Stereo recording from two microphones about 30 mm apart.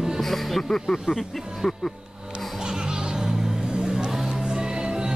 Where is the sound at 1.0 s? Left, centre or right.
Centre.